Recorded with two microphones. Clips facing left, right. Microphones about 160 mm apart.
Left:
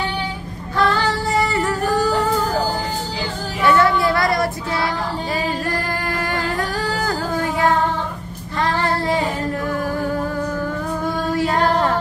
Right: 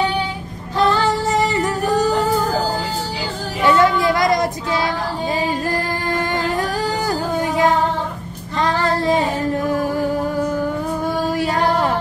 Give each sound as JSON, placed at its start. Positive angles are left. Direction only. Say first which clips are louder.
{"t": 0.7, "sound": "female singing", "louder": "right 2 dB", "side_deg": -25}
{"t": 3.6, "sound": "child singing", "louder": "right 1 dB", "side_deg": -20}
{"t": 6.5, "sound": "music", "louder": "right 2 dB", "side_deg": -15}
{"t": 8.5, "sound": "child singing", "louder": "right 2 dB", "side_deg": -20}
{"t": 11.3, "sound": "music", "louder": "left 3 dB", "side_deg": -15}